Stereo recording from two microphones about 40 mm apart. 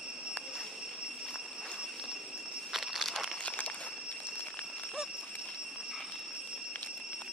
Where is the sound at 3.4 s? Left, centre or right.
Left.